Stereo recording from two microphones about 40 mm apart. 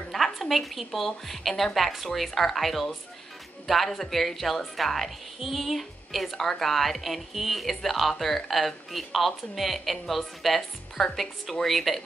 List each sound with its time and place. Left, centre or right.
0.1 s a woman's voice: centre